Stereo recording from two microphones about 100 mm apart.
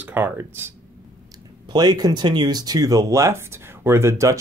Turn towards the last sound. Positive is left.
turn(degrees=-30)  # may be behind; listen again after turning